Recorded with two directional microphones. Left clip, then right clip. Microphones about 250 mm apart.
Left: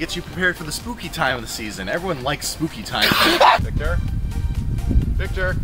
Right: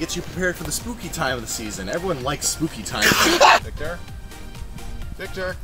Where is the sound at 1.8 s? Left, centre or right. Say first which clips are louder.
Left 2 dB; centre.